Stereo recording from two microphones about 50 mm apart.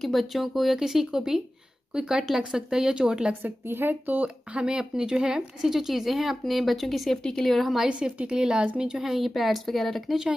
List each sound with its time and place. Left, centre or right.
0.0 s speech: centre
3.4 s speech: right
4.5 s speech: centre
7.9 s a woman's voice: right
8.9 s speech: centre